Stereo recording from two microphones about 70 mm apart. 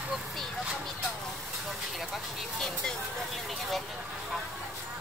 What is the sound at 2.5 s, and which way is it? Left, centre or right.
Speech, centre.